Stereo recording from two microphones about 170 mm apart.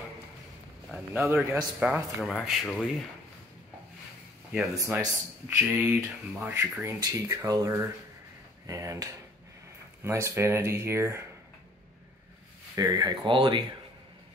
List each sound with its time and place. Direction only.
1.2 s speech: 15° right (ahead or behind)
1.8 s speech: 5° right (ahead or behind)
4.7 s speech: 15° right (ahead or behind)
12.7 s speech: 20° right (ahead or behind)